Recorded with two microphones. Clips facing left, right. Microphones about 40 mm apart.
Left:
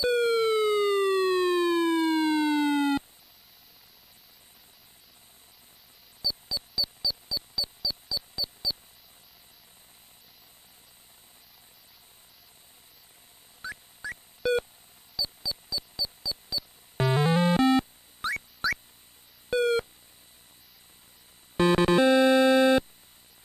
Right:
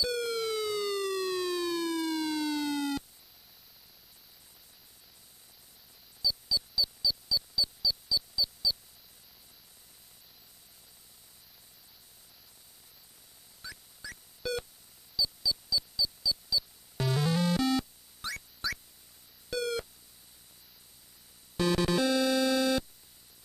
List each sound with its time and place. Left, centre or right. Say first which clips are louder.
0.0 s siren: left 8 dB; left
6.2 s mouse: right 1 dB; left
7.8 s mouse: right 2 dB; centre
8.6 s mouse: even; left
13.6 s a sound: left 8 dB; left
15.2 s mouse: right 3 dB; left
16.9 s music: left 6 dB; left
19.5 s busy signal: left 8 dB; left
21.5 s music: left 6 dB; left